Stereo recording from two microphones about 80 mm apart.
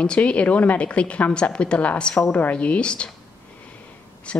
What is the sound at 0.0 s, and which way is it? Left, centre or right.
Speech, centre.